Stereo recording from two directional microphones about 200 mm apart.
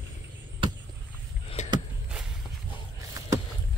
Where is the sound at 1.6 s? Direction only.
35° left (ahead or behind).